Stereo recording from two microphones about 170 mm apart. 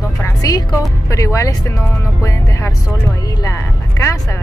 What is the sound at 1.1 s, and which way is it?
Speech, 20° left (ahead or behind).